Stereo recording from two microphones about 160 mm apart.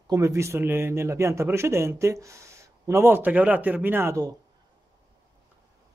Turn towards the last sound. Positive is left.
turn(degrees=-20)  # may be behind; listen again after turning